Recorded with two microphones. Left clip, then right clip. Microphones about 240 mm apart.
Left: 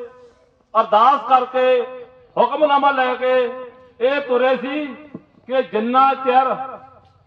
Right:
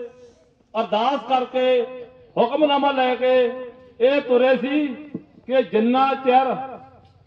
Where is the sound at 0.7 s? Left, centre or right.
Centre.